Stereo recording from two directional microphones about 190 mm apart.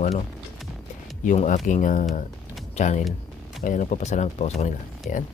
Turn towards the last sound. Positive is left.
turn(degrees=40)  # may be behind; listen again after turning